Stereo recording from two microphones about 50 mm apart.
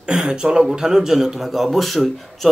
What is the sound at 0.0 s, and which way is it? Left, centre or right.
A man's voice, centre.